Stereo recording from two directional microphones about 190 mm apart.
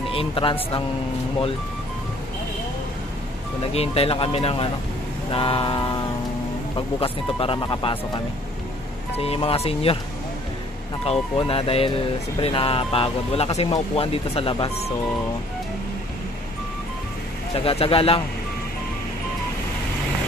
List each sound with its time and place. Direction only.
0.1 s speech: 30° left (ahead or behind)
3.7 s speech: 30° left (ahead or behind)
9.1 s speech: 30° left (ahead or behind)
11.1 s speech: 30° left (ahead or behind)
17.6 s speech: 30° left (ahead or behind)